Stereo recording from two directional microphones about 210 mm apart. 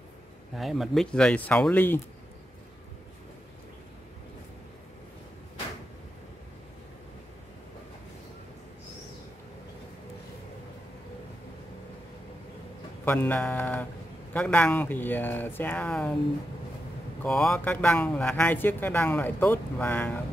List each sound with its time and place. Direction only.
0.6 s speech: centre (ahead or behind)
13.0 s speech: 10° left (ahead or behind)
17.2 s speech: 5° left (ahead or behind)